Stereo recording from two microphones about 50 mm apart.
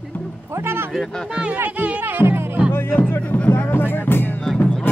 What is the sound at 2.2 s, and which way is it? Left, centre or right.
Music, right.